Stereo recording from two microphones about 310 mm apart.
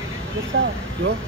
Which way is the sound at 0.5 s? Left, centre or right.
Right.